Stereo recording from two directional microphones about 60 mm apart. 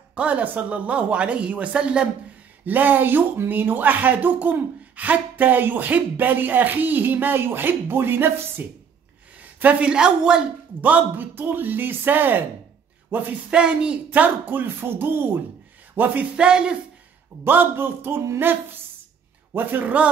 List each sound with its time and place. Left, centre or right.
0.1 s speech: right
2.6 s speech: right
9.4 s a woman's voice: right
10.8 s speech: right
13.5 s speech: centre
14.1 s speech: right
16.3 s speech: centre
17.5 s speech: right
19.5 s speech: right